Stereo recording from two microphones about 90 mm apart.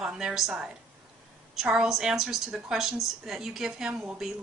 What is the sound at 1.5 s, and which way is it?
A woman's voice, 10° right (ahead or behind).